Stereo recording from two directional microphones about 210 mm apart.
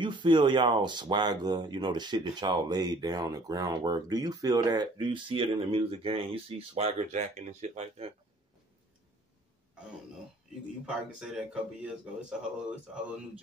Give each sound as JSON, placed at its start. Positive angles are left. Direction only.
{"t": 0.0, "sound": "speech", "side_deg": -20}
{"t": 10.9, "sound": "speech", "side_deg": -5}